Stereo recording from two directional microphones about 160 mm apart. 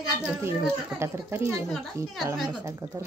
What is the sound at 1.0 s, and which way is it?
Speech, 15° right (ahead or behind).